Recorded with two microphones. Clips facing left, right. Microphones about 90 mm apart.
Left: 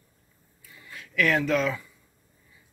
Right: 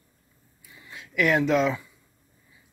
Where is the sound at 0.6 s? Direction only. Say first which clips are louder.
Even; 15° right (ahead or behind).